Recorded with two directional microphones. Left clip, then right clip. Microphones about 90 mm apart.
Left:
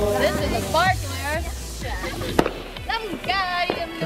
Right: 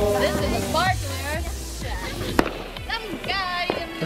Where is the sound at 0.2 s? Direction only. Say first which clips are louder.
Left 1 dB; 20° left (ahead or behind).